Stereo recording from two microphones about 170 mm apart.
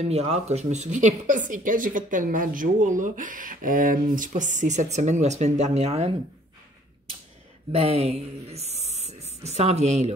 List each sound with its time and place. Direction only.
0.0 s a woman's voice: 40° right (ahead or behind)
7.7 s speech: 35° right (ahead or behind)